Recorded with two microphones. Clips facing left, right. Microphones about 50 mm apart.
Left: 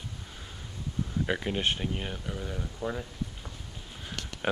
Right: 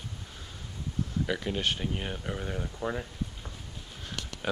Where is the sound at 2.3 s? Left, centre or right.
Right.